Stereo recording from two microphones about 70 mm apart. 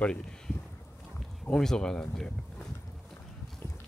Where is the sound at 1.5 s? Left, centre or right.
Centre.